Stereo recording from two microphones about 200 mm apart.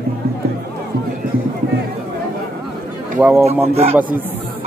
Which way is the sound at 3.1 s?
5° right (ahead or behind).